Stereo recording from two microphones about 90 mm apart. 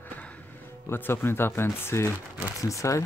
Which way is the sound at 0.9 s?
25° left (ahead or behind).